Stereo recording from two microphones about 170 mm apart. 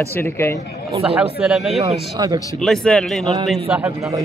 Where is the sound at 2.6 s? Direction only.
5° left (ahead or behind).